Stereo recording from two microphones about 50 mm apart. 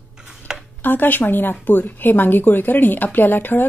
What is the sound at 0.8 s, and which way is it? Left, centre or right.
A woman's voice, left.